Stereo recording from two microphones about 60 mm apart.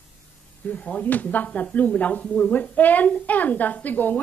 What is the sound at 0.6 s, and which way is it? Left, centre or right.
A woman's voice, left.